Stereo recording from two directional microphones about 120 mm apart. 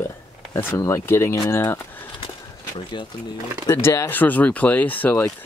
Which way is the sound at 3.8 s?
25° left (ahead or behind).